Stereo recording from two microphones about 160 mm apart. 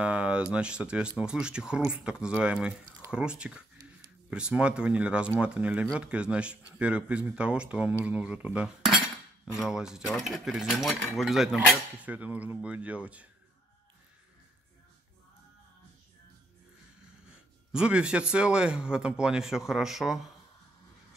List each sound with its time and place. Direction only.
0.0 s speech: 5° right (ahead or behind)
1.9 s cutlery: 5° right (ahead or behind)
4.3 s speech: 5° right (ahead or behind)
9.5 s cutlery: 5° right (ahead or behind)
17.7 s cutlery: 5° right (ahead or behind)